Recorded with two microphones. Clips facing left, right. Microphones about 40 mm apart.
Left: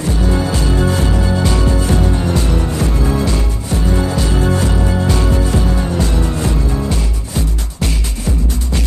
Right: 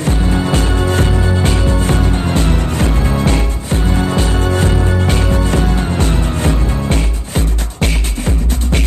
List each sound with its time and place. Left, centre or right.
0.0 s music: right